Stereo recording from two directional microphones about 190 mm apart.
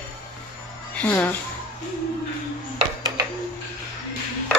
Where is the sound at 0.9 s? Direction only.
10° left (ahead or behind).